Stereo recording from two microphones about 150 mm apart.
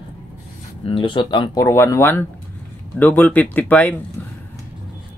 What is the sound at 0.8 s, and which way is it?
Speech, 35° left (ahead or behind).